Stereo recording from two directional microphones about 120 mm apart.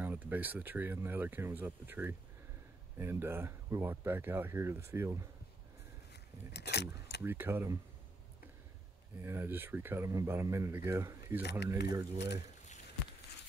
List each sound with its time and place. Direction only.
0.0 s speech: 15° right (ahead or behind)
6.9 s speech: 20° right (ahead or behind)
9.2 s speech: 20° right (ahead or behind)
11.9 s speech: 35° right (ahead or behind)